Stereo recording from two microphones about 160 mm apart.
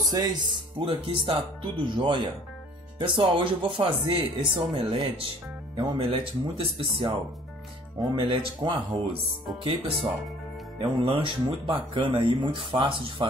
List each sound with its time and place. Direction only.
0.1 s speech: 30° right (ahead or behind)
3.2 s speech: 30° right (ahead or behind)